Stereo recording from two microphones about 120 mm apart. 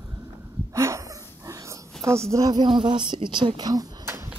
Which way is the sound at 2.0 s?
25° right (ahead or behind).